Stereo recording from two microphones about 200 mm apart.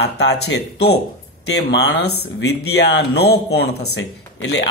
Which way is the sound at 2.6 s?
55° left (ahead or behind).